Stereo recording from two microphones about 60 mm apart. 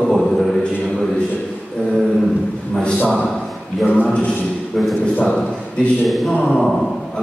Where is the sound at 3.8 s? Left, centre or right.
Centre.